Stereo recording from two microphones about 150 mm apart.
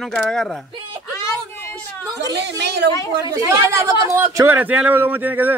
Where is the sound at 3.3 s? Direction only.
20° right (ahead or behind).